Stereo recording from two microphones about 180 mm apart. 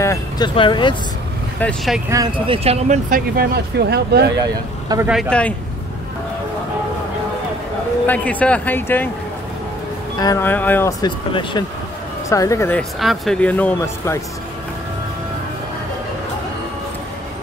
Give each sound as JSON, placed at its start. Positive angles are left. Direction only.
{"t": 0.0, "sound": "a sound", "side_deg": 15}
{"t": 0.6, "sound": "speech", "side_deg": 25}
{"t": 1.6, "sound": "speech", "side_deg": 5}
{"t": 2.0, "sound": "speech", "side_deg": -20}
{"t": 2.4, "sound": "speech", "side_deg": -30}
{"t": 3.1, "sound": "speech", "side_deg": -55}
{"t": 4.4, "sound": "speech", "side_deg": -20}
{"t": 5.3, "sound": "speech", "side_deg": 5}
{"t": 8.1, "sound": "speech", "side_deg": 10}
{"t": 10.1, "sound": "speech", "side_deg": 20}
{"t": 13.0, "sound": "speech", "side_deg": 0}